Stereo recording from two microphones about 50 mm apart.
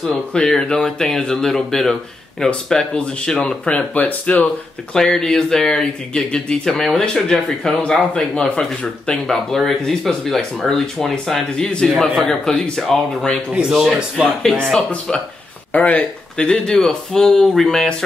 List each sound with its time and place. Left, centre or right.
0.3 s speech: centre
2.9 s speech: centre
3.6 s speech: left
4.9 s speech: centre
13.5 s speech: centre
14.4 s speech: centre
15.7 s speech: left; by 17.8 s centre